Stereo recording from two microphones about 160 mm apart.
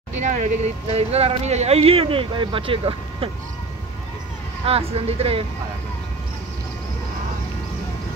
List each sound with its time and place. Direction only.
0.2 s speech: 45° right (ahead or behind)
4.6 s speech: 40° right (ahead or behind)